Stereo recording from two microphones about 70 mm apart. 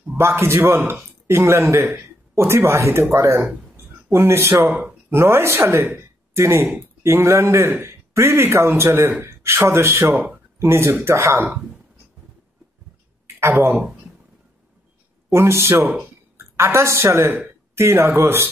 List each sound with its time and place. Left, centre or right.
0.2 s a man's voice: right
3.7 s a sound: right
5.1 s a man's voice: right
13.4 s speech: right
15.2 s a man's voice: right